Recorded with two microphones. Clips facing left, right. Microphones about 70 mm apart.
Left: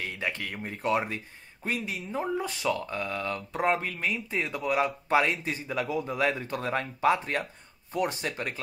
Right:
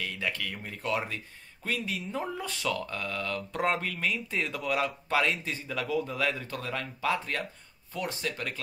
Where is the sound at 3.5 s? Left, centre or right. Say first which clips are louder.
Left 2 dB; centre.